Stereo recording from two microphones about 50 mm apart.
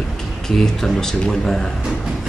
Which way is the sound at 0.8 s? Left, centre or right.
Centre.